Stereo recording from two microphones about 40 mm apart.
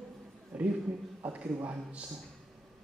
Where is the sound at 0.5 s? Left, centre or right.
Right.